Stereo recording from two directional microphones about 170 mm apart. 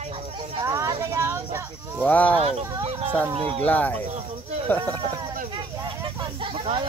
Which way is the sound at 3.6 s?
10° left (ahead or behind).